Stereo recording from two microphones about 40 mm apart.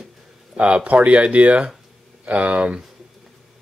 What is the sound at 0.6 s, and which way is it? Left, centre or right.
Speech, right.